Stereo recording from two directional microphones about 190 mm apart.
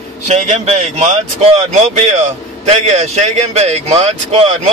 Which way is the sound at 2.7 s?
35° right (ahead or behind).